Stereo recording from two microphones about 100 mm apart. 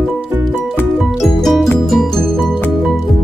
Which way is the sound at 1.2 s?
Centre (ahead or behind).